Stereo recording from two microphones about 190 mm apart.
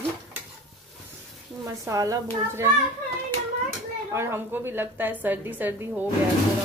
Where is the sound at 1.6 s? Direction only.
15° right (ahead or behind).